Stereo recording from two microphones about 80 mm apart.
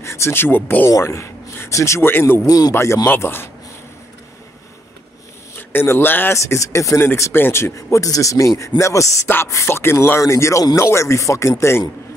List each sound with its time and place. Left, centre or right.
0.0 s speech: left
0.8 s speech: left
2.4 s speech: left
2.7 s speech: left
5.6 s speech: left
6.3 s speech: left